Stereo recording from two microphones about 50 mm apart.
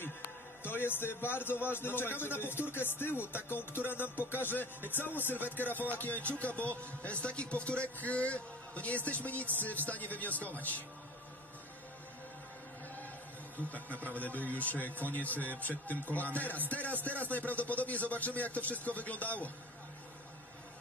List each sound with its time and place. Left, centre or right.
0.7 s a man's voice: left
13.7 s speech: left